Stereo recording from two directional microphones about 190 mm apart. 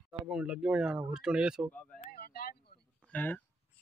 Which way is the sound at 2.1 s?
55° left (ahead or behind).